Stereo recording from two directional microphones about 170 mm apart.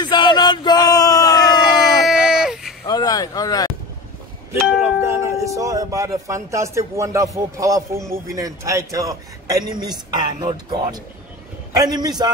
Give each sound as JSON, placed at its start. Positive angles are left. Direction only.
{"t": 0.0, "sound": "bellow", "side_deg": 25}
{"t": 2.0, "sound": "a sound", "side_deg": -5}
{"t": 2.9, "sound": "vehicle", "side_deg": 20}
{"t": 5.0, "sound": "a man's voice", "side_deg": -15}